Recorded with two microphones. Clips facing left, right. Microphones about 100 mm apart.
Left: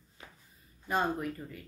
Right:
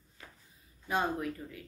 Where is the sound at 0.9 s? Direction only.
Centre (ahead or behind).